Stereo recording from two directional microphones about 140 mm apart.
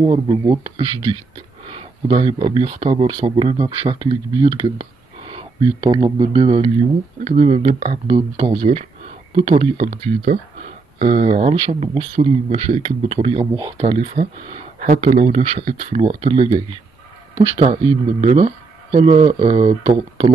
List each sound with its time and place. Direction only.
0.3 s speech: 35° right (ahead or behind)
7.2 s speech: 55° right (ahead or behind)
9.4 s speech: 40° right (ahead or behind)
9.8 s speech: 70° right (ahead or behind)
11.0 s speech: 50° right (ahead or behind)